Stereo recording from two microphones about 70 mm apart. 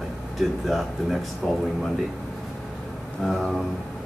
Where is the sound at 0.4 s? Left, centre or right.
Centre.